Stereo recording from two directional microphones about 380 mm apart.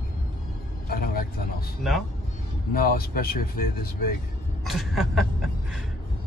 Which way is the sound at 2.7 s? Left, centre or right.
Left.